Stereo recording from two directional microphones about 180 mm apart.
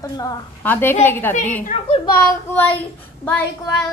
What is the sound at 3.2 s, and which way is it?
Speech, 10° left (ahead or behind).